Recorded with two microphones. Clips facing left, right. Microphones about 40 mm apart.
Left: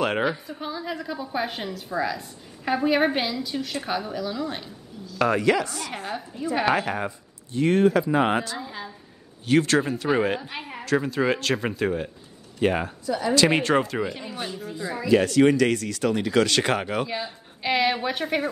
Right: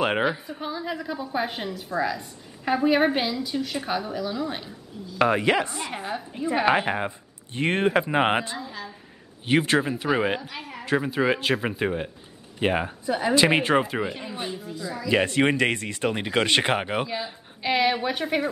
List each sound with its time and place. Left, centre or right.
0.0 s a woman's voice: centre
5.0 s speech: right
5.9 s a woman's voice: centre
6.7 s speech: right
8.5 s a woman's voice: centre
9.5 s speech: centre
10.6 s a sound: centre
11.0 s speech: centre
14.8 s speech: left
15.0 s speech: right
17.1 s a woman's voice: centre